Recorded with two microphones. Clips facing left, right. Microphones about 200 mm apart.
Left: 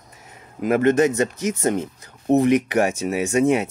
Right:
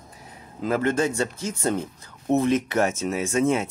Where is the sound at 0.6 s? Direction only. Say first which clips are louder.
Left 6 dB; 20° left (ahead or behind).